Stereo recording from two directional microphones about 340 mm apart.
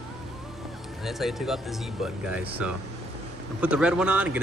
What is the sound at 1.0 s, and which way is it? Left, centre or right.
Speech, centre.